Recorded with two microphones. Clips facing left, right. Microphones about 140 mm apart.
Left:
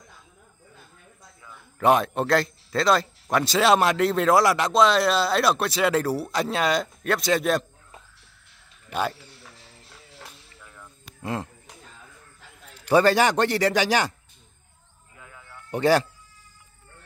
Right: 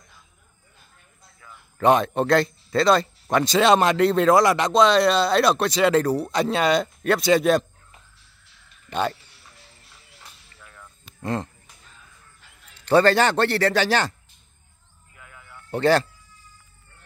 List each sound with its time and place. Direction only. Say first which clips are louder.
1.8 s speech: right 2 dB; 5° left (ahead or behind)
10.6 s cricket: even; 10° left (ahead or behind)
12.7 s speech: right 1 dB; 10° left (ahead or behind)
15.1 s a sound: left 1 dB; 25° left (ahead or behind)
15.5 s speech: right 1 dB; 15° left (ahead or behind)